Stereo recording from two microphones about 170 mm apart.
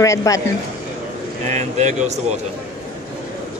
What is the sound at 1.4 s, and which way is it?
Speech, 40° right (ahead or behind).